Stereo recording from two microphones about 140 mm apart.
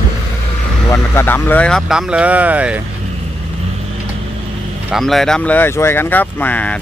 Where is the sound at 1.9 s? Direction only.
5° right (ahead or behind).